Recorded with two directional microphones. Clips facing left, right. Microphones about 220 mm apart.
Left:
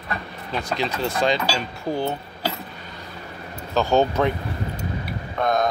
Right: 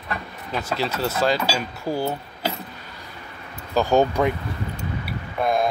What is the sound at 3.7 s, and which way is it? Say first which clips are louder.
Speech: right 1 dB; 15° right (ahead or behind).